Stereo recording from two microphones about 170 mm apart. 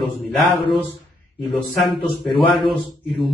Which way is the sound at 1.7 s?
Centre (ahead or behind).